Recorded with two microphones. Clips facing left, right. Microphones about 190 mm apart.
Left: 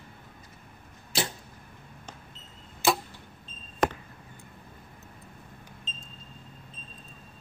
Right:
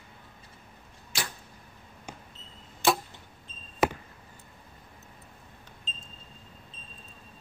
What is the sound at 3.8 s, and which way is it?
Chop, 5° right (ahead or behind).